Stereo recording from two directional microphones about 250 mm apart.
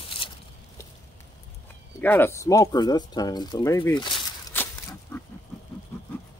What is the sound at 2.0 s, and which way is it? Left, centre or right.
Speech, centre.